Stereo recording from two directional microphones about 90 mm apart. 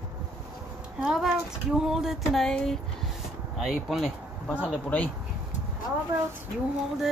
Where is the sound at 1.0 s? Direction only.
5° right (ahead or behind).